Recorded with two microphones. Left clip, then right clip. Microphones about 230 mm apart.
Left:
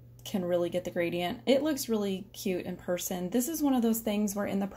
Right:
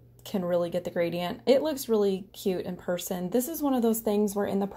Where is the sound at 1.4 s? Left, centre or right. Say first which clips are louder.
Right 4 dB; right.